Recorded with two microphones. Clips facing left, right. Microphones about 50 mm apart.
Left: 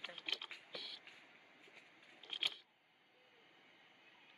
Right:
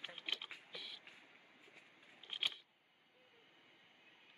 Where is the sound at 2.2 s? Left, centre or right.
Right.